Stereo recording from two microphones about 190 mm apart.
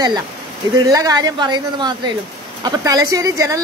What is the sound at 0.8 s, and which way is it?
Speech, 20° right (ahead or behind).